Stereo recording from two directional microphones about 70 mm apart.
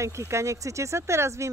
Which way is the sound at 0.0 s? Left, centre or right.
Right.